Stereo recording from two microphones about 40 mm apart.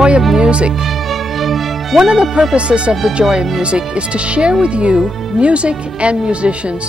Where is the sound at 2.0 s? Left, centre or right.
Right.